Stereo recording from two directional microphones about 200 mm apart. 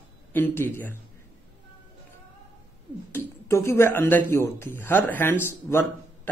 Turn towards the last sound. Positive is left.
turn(degrees=10)  # may be behind; listen again after turning